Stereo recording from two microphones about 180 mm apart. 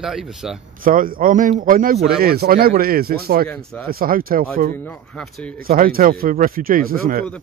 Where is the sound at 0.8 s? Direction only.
50° right (ahead or behind).